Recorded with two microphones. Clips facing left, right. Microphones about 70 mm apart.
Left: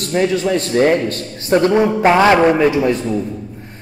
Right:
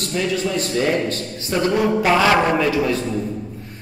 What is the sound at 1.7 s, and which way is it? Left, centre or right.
A man's voice, left.